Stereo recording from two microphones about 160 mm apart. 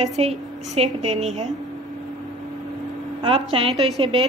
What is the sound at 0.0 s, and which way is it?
A woman's voice, 40° right (ahead or behind).